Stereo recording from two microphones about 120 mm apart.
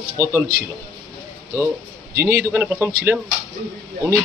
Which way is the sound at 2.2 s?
20° right (ahead or behind).